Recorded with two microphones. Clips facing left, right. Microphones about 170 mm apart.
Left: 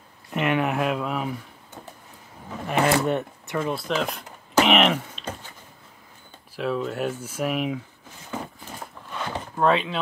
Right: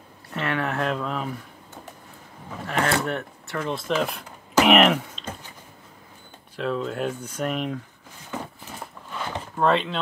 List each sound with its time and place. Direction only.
0.3 s a sound: 15° left (ahead or behind)
2.6 s speech: 20° left (ahead or behind)
3.5 s speech: 5° left (ahead or behind)
6.5 s speech: 5° left (ahead or behind)
9.6 s speech: centre (ahead or behind)